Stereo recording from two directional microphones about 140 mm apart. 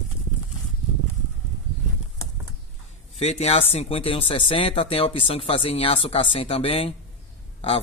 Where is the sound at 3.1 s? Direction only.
50° left (ahead or behind).